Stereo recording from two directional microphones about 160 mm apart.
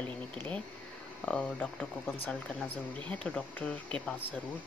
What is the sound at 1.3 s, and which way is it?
Speech, 5° left (ahead or behind).